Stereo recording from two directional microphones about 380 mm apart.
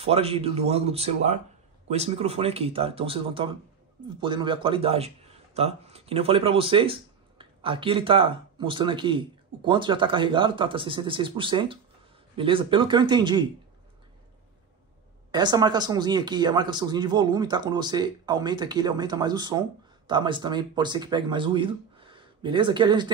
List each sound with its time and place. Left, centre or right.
0.0 s a man's voice: centre
15.3 s a man's voice: centre